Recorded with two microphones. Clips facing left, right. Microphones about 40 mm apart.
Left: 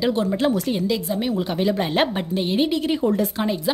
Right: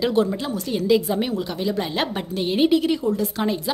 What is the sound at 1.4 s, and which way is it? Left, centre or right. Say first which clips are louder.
Speech: left 3 dB; left.